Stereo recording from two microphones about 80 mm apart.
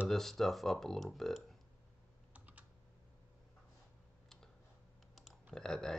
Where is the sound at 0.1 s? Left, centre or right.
Centre.